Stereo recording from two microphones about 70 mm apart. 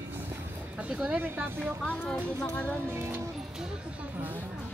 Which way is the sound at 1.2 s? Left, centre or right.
Right.